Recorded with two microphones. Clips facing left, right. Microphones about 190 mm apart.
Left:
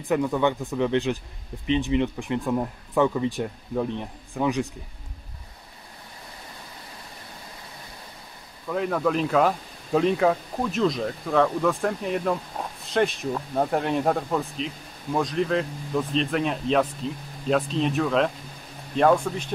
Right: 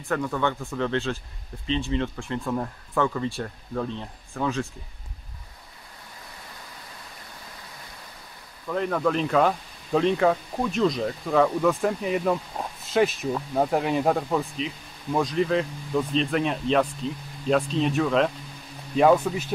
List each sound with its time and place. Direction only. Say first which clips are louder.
0.0 s speech: left 4 dB; 15° left (ahead or behind)
8.6 s speech: even; 5° left (ahead or behind)